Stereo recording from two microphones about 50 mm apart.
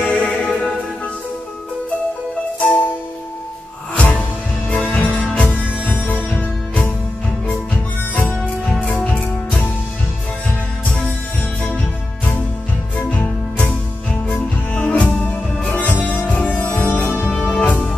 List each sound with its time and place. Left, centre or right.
0.0 s music: left
2.6 s music: left
3.9 s music: left
12.9 s music: left
14.3 s music: left